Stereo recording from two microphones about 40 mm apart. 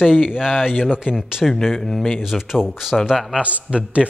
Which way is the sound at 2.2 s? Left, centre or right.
Centre.